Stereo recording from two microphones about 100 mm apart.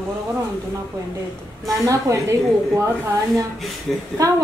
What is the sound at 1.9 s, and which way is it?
Speech, 30° right (ahead or behind).